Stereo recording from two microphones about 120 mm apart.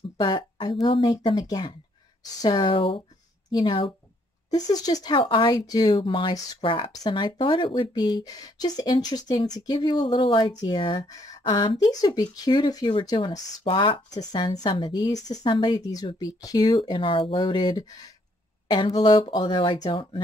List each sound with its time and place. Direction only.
0.2 s a woman's voice: 40° left (ahead or behind)
4.6 s speech: 30° left (ahead or behind)
5.1 s speech: 45° left (ahead or behind)
6.9 s speech: 35° left (ahead or behind)
16.8 s speech: 45° left (ahead or behind)